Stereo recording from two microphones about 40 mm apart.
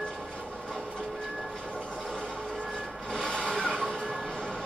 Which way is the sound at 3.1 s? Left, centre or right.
Left.